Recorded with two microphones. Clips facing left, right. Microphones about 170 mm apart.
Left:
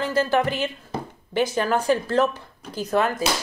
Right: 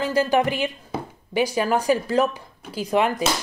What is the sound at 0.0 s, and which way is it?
Speech, 15° right (ahead or behind).